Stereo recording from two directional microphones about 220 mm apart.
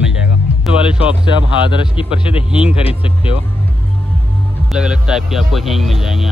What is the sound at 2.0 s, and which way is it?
Speech, 25° left (ahead or behind).